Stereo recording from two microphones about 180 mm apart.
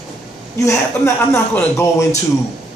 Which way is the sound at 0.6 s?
15° left (ahead or behind).